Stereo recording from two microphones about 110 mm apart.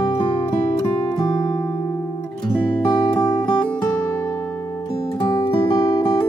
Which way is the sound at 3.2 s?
40° left (ahead or behind).